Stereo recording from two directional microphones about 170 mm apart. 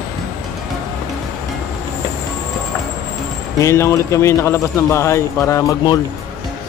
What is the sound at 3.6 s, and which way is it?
Speech, 15° left (ahead or behind).